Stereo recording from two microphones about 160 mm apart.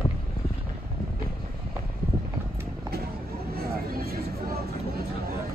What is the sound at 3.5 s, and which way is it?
Vehicle, 70° right (ahead or behind).